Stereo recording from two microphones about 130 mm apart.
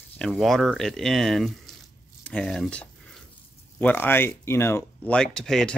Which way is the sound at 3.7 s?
15° left (ahead or behind).